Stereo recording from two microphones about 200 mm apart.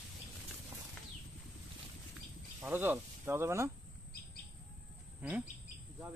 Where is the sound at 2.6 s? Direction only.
10° right (ahead or behind).